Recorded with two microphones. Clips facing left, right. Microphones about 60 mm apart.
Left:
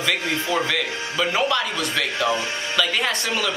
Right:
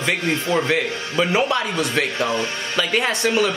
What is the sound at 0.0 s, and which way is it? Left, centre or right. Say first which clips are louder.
A man's voice: right 2 dB; right.